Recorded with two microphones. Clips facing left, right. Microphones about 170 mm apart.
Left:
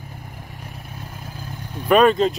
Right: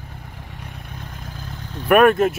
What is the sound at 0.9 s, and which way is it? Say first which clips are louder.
Vehicle: even; 10° left (ahead or behind).